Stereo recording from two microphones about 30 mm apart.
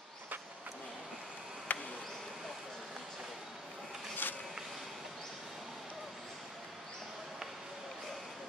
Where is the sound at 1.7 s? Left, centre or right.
Left.